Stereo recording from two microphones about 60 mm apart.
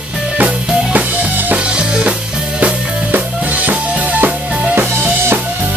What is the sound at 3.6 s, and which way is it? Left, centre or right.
Drum kit, right.